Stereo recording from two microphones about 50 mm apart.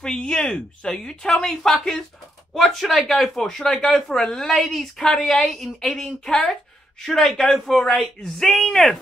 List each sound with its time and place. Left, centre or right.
0.0 s speech: centre